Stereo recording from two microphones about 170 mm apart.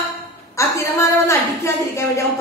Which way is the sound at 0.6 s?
15° left (ahead or behind).